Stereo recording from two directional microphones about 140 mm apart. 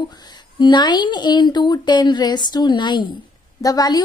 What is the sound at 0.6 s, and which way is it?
A woman's voice, 30° left (ahead or behind).